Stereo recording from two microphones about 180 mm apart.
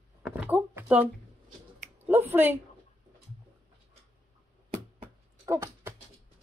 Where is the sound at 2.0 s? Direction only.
10° right (ahead or behind).